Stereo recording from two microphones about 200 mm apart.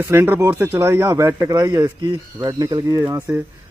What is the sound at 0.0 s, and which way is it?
Speech, 10° right (ahead or behind).